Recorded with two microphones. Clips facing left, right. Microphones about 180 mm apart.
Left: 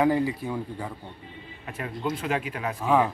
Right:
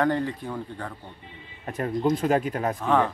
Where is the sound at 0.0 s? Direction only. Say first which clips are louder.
Left 2 dB; 10° left (ahead or behind).